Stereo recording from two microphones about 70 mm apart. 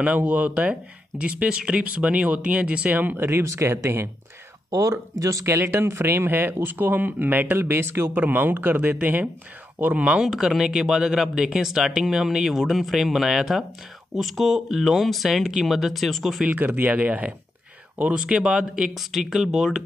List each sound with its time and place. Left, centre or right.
0.0 s speech: right
3.2 s speech: right
4.6 s speech: right
5.5 s speech: right; by 10.2 s centre
10.2 s speech: centre
16.4 s speech: right; by 19.8 s centre